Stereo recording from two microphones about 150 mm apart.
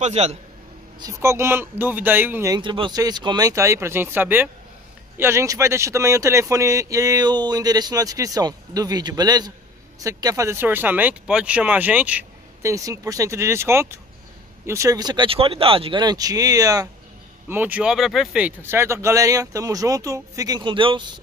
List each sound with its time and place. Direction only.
0.0 s a man's voice: 45° right (ahead or behind)
0.9 s speech: 20° right (ahead or behind)
2.5 s speech: 30° right (ahead or behind); by 12.7 s 10° right (ahead or behind)
12.7 s speech: 20° right (ahead or behind)
17.5 s speech: 10° right (ahead or behind); by 21.2 s 35° right (ahead or behind)